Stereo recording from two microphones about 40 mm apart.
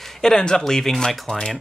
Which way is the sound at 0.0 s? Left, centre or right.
Centre.